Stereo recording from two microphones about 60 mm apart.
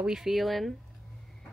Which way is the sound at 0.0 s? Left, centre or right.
Centre.